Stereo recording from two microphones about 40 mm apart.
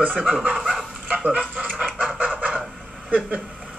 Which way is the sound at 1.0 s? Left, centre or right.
Right.